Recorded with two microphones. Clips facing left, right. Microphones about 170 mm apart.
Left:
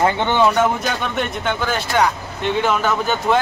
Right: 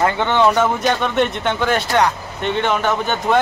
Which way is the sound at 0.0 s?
15° left (ahead or behind).